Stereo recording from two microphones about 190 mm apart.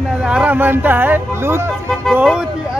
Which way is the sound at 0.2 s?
5° right (ahead or behind).